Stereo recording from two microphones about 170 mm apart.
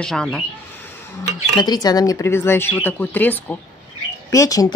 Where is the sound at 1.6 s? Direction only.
25° left (ahead or behind).